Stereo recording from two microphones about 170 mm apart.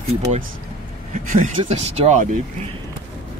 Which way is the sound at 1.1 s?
45° right (ahead or behind).